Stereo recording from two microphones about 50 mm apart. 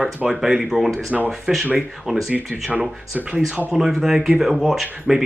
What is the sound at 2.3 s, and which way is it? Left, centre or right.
Speech, right.